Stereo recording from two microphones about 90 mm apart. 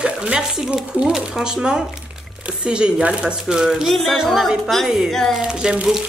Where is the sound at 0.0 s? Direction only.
10° right (ahead or behind).